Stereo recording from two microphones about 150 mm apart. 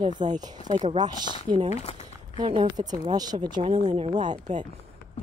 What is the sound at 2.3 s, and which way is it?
Speech, 35° right (ahead or behind).